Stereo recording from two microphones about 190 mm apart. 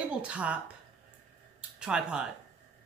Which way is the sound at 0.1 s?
5° right (ahead or behind).